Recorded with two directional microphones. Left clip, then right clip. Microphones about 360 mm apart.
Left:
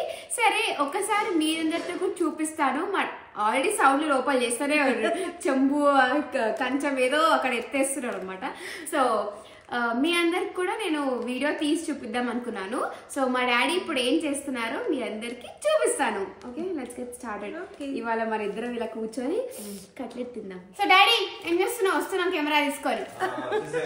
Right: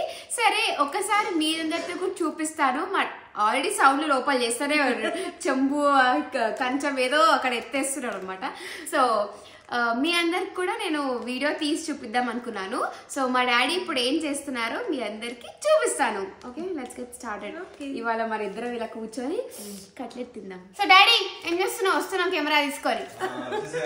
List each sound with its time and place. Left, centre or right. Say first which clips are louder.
0.4 s a woman's voice: right 1 dB; centre
17.8 s a woman's voice: right 1 dB; centre
20.7 s a child's voice: right 2 dB; centre